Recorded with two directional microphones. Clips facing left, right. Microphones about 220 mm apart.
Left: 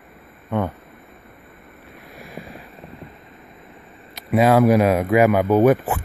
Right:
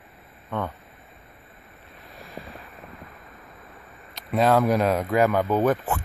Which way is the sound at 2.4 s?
15° left (ahead or behind).